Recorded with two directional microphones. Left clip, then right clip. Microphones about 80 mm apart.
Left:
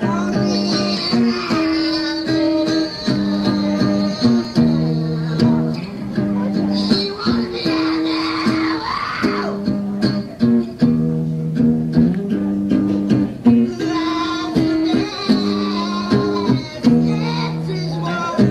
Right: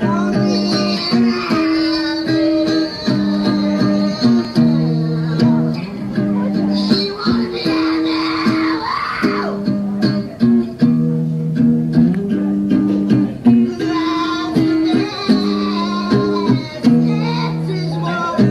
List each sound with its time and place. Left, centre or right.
0.0 s music: left
7.6 s music: left